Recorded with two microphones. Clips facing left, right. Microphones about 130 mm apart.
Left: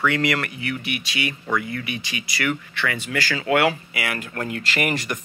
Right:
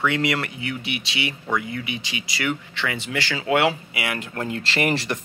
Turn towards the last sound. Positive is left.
turn(degrees=-30)  # may be behind; listen again after turning